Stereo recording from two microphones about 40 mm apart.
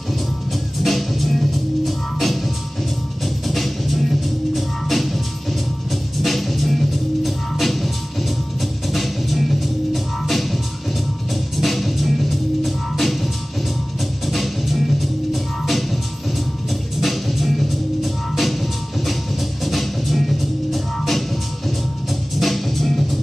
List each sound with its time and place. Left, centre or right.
0.5 s music: centre